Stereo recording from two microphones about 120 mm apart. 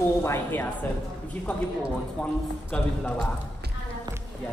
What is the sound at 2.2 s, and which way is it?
A man's voice, 10° left (ahead or behind).